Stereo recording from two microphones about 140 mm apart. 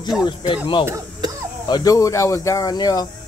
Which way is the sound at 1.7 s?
25° left (ahead or behind).